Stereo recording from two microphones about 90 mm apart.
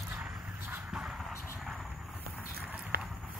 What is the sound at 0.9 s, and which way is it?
Vehicle, 5° right (ahead or behind).